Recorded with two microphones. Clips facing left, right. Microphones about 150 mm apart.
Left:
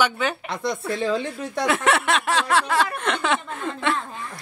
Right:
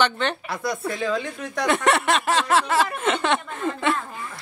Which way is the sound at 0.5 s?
25° left (ahead or behind).